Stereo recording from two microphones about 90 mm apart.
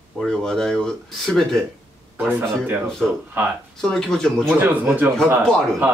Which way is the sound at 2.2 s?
15° right (ahead or behind).